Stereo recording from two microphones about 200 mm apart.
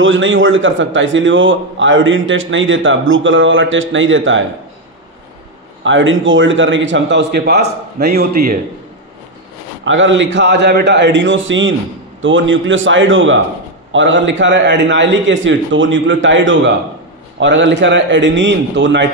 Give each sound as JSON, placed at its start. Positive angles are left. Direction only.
{"t": 0.0, "sound": "a man's voice", "side_deg": -75}
{"t": 5.9, "sound": "a man's voice", "side_deg": -70}
{"t": 9.8, "sound": "a man's voice", "side_deg": -70}